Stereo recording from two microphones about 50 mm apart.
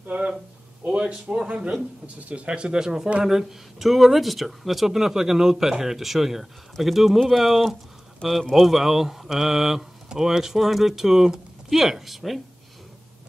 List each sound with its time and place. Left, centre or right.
0.8 s speech: right
1.1 s speech: centre
2.2 s speech: right; by 12.4 s centre